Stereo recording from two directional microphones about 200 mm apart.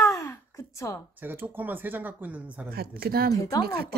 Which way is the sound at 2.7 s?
50° right (ahead or behind).